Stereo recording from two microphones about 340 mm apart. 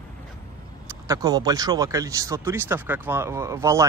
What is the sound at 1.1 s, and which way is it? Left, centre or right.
Speech, centre.